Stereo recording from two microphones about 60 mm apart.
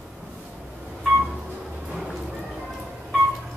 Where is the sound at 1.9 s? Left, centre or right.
Centre.